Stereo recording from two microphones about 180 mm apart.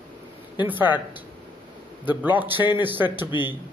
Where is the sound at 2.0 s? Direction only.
10° right (ahead or behind).